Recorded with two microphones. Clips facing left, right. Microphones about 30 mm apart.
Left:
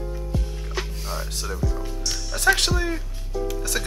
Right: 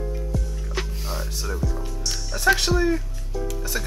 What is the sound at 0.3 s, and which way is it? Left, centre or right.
Music, left.